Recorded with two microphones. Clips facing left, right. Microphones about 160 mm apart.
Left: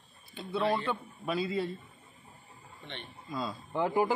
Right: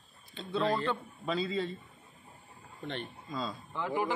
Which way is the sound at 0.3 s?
10° left (ahead or behind).